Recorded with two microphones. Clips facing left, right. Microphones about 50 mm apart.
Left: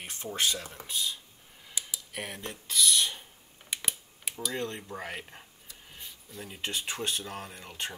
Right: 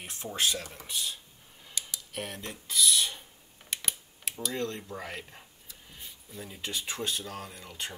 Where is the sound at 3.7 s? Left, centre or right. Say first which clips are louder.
Even; centre.